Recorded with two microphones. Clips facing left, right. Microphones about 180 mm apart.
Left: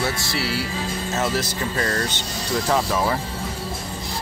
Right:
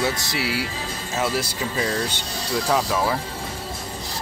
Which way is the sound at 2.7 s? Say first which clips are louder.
Even; 5° left (ahead or behind).